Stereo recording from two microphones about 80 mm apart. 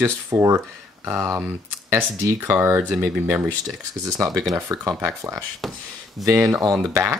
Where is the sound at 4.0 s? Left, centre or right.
Right.